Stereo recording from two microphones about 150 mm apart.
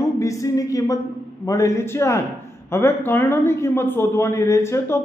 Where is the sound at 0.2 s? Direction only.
20° left (ahead or behind).